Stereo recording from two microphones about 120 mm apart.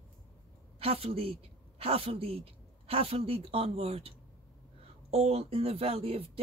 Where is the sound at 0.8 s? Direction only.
55° right (ahead or behind).